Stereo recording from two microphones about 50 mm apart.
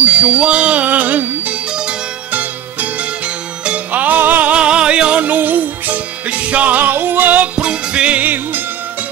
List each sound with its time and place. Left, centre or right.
0.0 s music: right
0.8 s music: right
1.7 s music: centre
2.3 s music: right
4.5 s music: right
5.2 s music: right
7.5 s music: right
8.2 s music: right